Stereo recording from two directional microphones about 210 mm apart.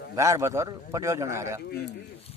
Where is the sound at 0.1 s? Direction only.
15° right (ahead or behind).